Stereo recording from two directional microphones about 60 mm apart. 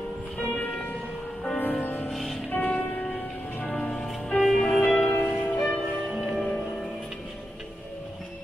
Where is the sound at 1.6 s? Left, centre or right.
Left.